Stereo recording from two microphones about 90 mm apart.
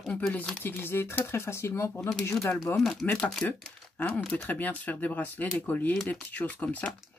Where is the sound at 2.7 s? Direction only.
Centre (ahead or behind).